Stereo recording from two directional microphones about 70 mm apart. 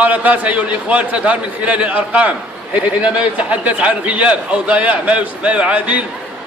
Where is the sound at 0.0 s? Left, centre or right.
Right.